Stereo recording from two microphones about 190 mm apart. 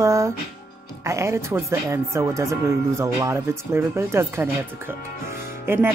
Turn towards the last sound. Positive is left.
turn(degrees=-10)  # may be behind; listen again after turning